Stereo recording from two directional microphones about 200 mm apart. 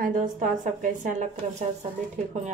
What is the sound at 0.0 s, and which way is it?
Speech, 40° right (ahead or behind).